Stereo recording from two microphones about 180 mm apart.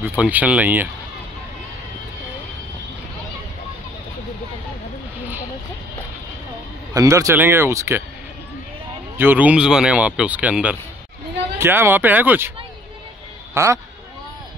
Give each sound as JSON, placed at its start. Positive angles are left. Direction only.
{"t": 0.0, "sound": "a man's voice", "side_deg": -10}
{"t": 6.9, "sound": "a man's voice", "side_deg": -15}
{"t": 9.2, "sound": "a man's voice", "side_deg": -10}
{"t": 13.6, "sound": "a man's voice", "side_deg": -15}